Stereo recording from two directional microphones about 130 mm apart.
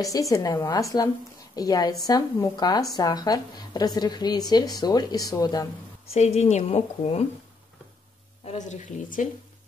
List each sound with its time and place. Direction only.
0.0 s a woman's voice: 25° left (ahead or behind)
6.0 s a woman's voice: 55° left (ahead or behind)
8.5 s speech: 65° left (ahead or behind)